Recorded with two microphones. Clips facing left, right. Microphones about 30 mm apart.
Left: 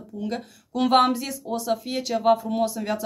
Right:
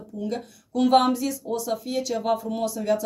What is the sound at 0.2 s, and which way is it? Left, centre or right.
Speech, left.